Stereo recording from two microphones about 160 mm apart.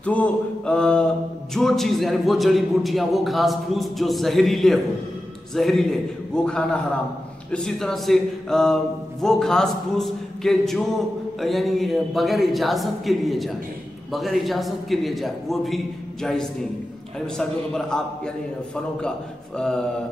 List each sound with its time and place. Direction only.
0.0 s mantra: 10° left (ahead or behind)
1.5 s a man's voice: centre (ahead or behind)